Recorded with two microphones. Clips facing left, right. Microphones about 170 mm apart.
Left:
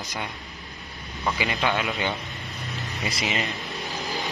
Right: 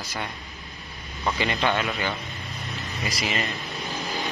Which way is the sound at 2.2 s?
Centre (ahead or behind).